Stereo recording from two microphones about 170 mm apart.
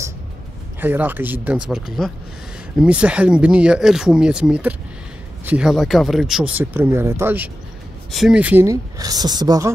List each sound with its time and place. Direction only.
0.7 s speech: 10° right (ahead or behind)
8.1 s speech: centre (ahead or behind); by 9.7 s 25° right (ahead or behind)